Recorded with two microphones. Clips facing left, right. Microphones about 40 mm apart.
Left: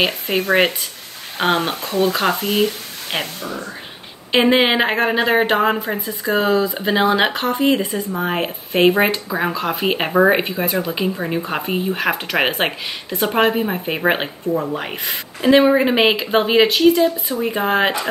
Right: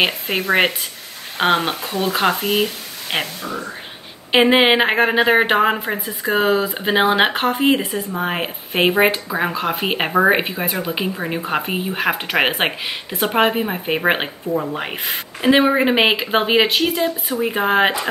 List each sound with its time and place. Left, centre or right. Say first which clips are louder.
0.0 s speech: even; centre
4.3 s speech: right 1 dB; centre